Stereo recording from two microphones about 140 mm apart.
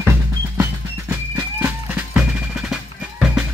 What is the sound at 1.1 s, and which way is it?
Music, 10° right (ahead or behind).